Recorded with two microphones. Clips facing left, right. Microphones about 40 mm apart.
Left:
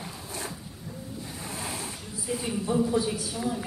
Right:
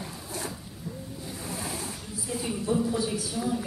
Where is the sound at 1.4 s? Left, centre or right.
Left.